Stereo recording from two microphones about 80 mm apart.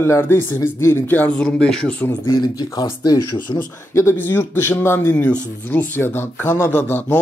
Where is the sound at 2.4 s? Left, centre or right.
Left.